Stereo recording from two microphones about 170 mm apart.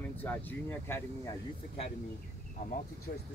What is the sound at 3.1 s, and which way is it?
Speech, 65° left (ahead or behind).